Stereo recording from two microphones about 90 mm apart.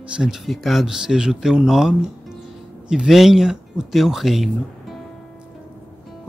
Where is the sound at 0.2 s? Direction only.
5° right (ahead or behind).